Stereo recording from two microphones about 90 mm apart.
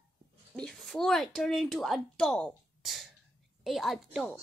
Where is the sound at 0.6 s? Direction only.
5° left (ahead or behind).